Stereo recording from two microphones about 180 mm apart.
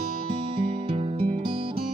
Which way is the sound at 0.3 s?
30° right (ahead or behind).